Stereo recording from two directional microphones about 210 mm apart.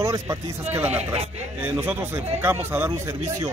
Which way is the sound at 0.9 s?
30° right (ahead or behind).